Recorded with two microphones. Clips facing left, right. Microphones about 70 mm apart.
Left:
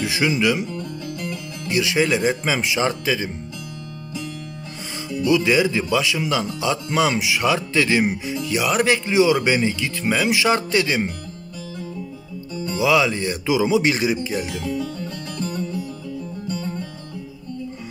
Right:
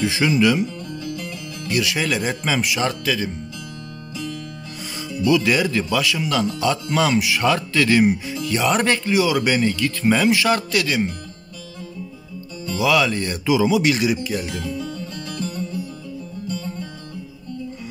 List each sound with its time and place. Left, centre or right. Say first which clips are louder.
0.0 s speech: right 2 dB; centre
1.0 s music: left 1 dB; left
1.7 s speech: left 2 dB; left
5.2 s speech: even; centre
8.5 s speech: even; centre
9.1 s speech: left 2 dB; left; by 10.4 s centre
10.4 s speech: left 1 dB; left
12.7 s speech: even; centre
14.6 s music: left 2 dB; left